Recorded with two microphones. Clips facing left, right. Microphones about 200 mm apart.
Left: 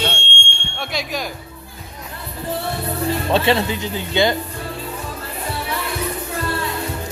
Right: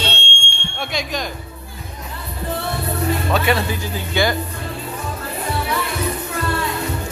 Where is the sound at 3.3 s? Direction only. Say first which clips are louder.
Left 5 dB; 25° left (ahead or behind).